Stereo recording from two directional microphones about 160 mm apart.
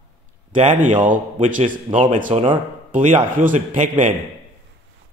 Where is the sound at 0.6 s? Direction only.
50° right (ahead or behind).